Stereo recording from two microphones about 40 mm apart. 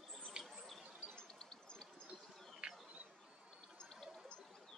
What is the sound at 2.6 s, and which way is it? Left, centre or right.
Bird, right.